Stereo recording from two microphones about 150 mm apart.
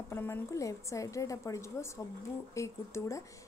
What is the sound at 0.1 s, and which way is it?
A woman's voice, 15° left (ahead or behind).